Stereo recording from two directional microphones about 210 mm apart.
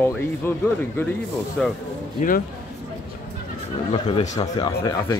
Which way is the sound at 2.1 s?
40° left (ahead or behind).